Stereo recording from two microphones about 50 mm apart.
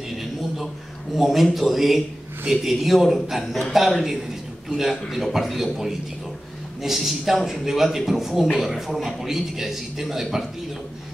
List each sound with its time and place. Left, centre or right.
1.1 s a man's voice: centre